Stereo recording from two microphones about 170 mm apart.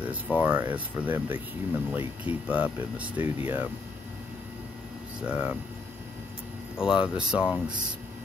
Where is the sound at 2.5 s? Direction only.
10° right (ahead or behind).